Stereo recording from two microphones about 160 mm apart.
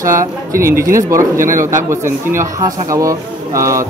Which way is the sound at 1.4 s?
55° right (ahead or behind).